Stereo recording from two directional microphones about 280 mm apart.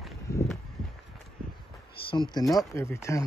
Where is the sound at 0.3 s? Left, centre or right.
Centre.